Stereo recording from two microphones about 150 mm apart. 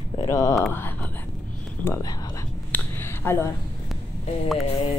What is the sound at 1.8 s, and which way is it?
Speech, 20° left (ahead or behind).